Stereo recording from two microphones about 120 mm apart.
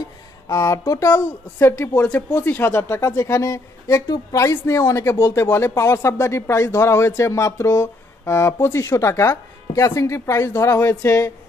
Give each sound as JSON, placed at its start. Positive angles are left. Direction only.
{"t": 0.5, "sound": "speech", "side_deg": 30}